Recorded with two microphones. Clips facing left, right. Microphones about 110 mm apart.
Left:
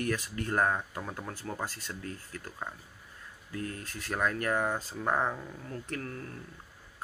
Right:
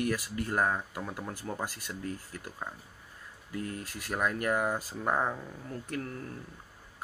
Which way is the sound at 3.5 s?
20° right (ahead or behind).